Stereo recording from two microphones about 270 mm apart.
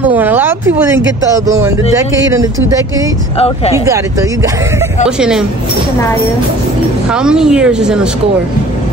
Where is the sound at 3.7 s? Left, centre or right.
Centre.